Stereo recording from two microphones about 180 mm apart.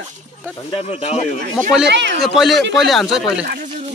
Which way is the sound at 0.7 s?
35° left (ahead or behind).